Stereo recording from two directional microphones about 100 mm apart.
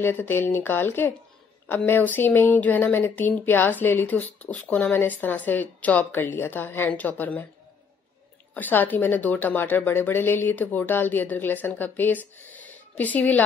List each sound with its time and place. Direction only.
0.0 s a woman's voice: 20° left (ahead or behind)
8.5 s a woman's voice: 20° left (ahead or behind)